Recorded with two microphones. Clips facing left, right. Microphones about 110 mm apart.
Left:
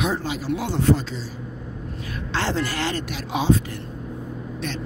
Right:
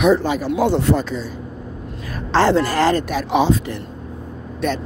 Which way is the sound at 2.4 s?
50° right (ahead or behind).